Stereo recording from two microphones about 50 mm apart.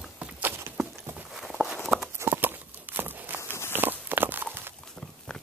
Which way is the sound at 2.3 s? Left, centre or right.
Right.